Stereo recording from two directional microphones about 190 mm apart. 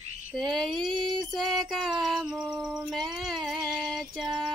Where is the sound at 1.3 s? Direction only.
Centre (ahead or behind).